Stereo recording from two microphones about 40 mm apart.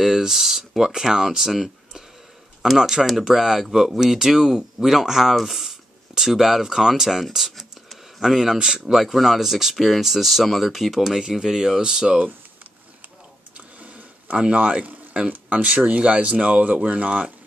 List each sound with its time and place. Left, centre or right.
0.0 s speech: centre
8.5 s speech: centre
8.9 s speech: centre
13.6 s a sound: right
14.4 s speech: right